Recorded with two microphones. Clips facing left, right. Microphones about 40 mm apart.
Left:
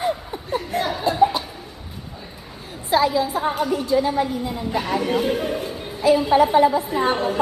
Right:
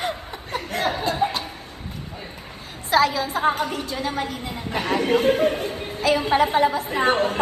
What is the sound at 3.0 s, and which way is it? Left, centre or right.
A woman's voice, right.